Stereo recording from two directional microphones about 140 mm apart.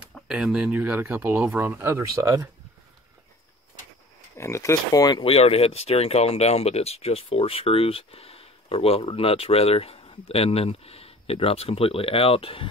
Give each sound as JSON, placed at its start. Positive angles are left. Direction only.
{"t": 0.1, "sound": "speech", "side_deg": -5}
{"t": 4.4, "sound": "speech", "side_deg": 20}
{"t": 5.3, "sound": "speech", "side_deg": 45}